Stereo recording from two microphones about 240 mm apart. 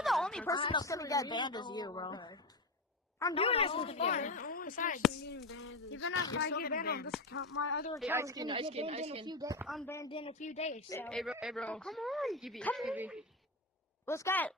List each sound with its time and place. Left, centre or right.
0.0 s a sound: centre
0.5 s a woman's voice: centre
5.9 s a woman's voice: left
8.0 s a woman's voice: centre
9.7 s speech: centre
9.9 s a woman's voice: left
10.9 s speech: centre
14.0 s speech: centre